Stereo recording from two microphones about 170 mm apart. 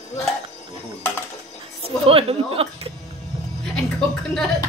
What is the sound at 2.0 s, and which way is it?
Speech, 35° right (ahead or behind).